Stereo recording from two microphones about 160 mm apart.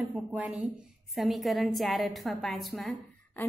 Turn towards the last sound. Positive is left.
turn(degrees=0)  # may be behind; listen again after turning